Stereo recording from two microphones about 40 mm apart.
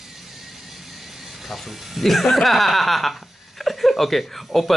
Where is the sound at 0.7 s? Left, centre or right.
Centre.